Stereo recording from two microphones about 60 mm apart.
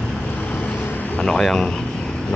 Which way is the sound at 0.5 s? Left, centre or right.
Left.